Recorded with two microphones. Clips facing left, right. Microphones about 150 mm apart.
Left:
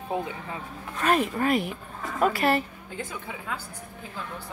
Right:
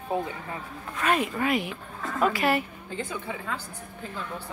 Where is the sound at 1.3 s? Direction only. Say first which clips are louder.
Left 2 dB; 40° left (ahead or behind).